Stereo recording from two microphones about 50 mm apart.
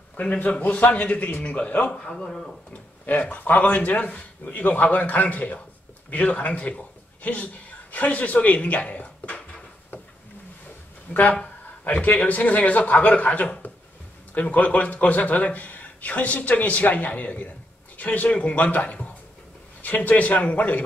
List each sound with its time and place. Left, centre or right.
0.2 s a man's voice: left
2.0 s a man's voice: centre
2.7 s a man's voice: left
7.9 s speech: left
11.1 s a man's voice: left